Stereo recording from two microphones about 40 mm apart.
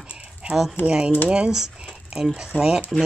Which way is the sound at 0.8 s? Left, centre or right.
Right.